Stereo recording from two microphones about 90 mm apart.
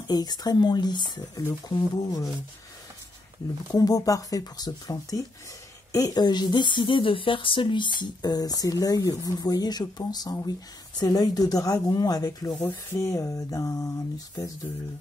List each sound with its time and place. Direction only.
0.0 s a woman's voice: 50° left (ahead or behind)
3.7 s a woman's voice: 45° left (ahead or behind)
12.9 s a sound: 35° left (ahead or behind)